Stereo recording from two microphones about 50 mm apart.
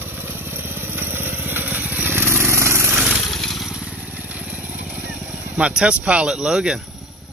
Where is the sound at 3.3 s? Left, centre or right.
Centre.